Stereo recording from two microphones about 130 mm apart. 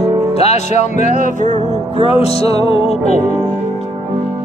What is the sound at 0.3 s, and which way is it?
Speech, 55° left (ahead or behind).